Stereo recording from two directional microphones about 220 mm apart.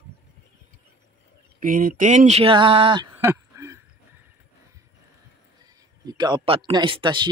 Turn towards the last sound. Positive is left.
turn(degrees=-20)  # may be behind; listen again after turning